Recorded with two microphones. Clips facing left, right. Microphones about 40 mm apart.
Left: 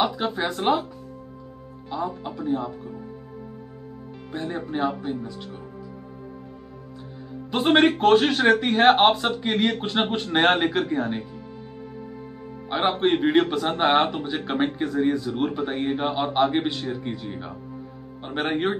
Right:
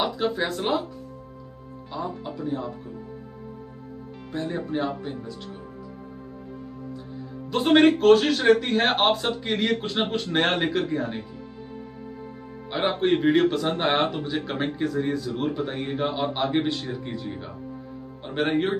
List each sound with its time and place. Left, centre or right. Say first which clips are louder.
0.5 s a man's voice: left 4 dB; centre
1.9 s a man's voice: left 3 dB; centre
4.3 s a man's voice: right 1 dB; centre
7.8 s a man's voice: right 2 dB; left
12.6 s a man's voice: left 1 dB; left